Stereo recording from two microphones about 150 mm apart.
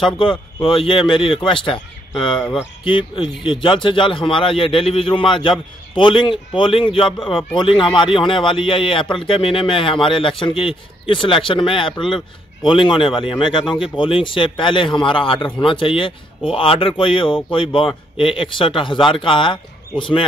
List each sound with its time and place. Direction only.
0.0 s a man's voice: 35° left (ahead or behind)